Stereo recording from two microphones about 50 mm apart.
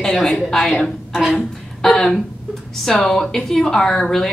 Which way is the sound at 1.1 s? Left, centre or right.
Centre.